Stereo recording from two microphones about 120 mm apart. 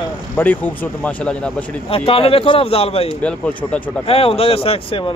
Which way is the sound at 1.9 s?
50° left (ahead or behind).